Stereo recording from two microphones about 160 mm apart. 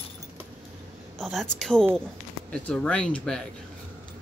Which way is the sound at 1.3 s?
5° left (ahead or behind).